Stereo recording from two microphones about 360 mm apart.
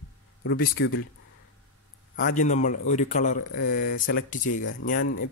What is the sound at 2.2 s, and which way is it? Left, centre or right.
Speech, left.